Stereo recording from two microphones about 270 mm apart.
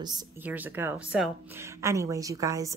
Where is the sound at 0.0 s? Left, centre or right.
Centre.